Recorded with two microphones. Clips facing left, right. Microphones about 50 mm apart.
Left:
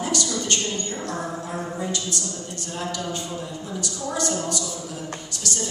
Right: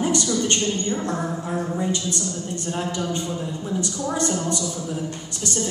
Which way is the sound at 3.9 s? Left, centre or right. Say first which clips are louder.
Even; right.